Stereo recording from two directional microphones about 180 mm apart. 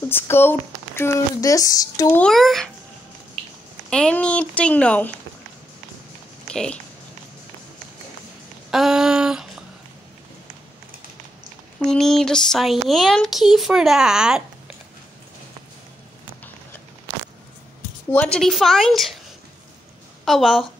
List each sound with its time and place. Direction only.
0.1 s speech: 10° left (ahead or behind)
2.1 s speech: centre (ahead or behind)
3.9 s speech: 5° left (ahead or behind)
6.4 s a sound: 5° left (ahead or behind)
8.6 s a sound: 5° right (ahead or behind)
11.8 s speech: 5° left (ahead or behind)
18.1 s speech: 5° left (ahead or behind)
20.2 s speech: centre (ahead or behind)